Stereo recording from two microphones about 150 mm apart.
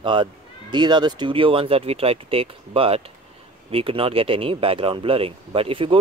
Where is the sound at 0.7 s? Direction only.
30° right (ahead or behind).